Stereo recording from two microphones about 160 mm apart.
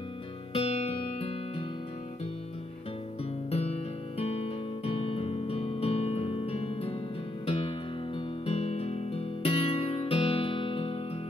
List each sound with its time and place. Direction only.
0.5 s music: 40° left (ahead or behind)
3.4 s music: 40° left (ahead or behind)